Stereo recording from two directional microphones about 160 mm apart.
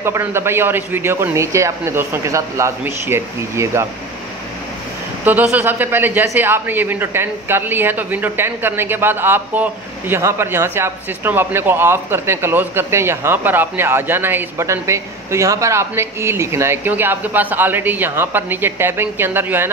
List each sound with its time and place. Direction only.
0.0 s a man's voice: 15° right (ahead or behind)
5.2 s a man's voice: 10° right (ahead or behind)